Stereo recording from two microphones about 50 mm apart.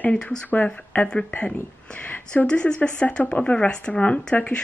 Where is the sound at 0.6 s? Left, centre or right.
Left.